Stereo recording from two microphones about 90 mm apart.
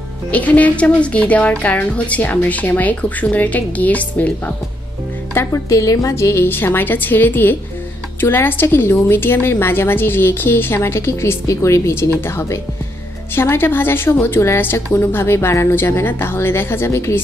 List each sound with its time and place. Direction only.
0.3 s speech: 15° left (ahead or behind)
5.3 s a woman's voice: 30° left (ahead or behind)